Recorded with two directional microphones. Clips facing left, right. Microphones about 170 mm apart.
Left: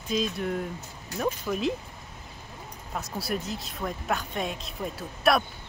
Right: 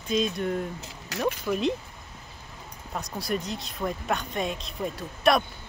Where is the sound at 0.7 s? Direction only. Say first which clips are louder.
Right 1 dB; 85° right.